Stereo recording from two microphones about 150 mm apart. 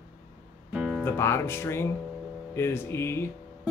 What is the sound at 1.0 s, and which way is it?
Speech, 15° left (ahead or behind).